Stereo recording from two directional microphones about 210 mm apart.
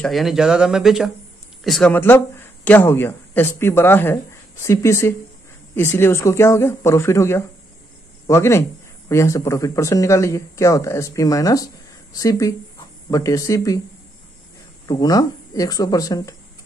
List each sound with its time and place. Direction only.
0.0 s speech: centre (ahead or behind); by 13.7 s 15° left (ahead or behind)
14.9 s speech: 20° left (ahead or behind)